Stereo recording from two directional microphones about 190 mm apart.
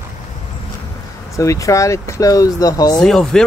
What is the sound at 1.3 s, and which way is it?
Speech, 15° left (ahead or behind).